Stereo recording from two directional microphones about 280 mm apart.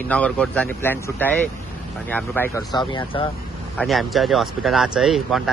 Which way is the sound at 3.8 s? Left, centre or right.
Centre.